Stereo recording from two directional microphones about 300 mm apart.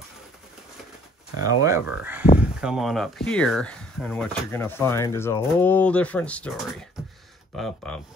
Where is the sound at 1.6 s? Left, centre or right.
Centre.